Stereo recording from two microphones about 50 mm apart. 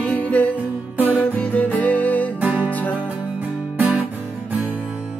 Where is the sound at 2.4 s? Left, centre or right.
Right.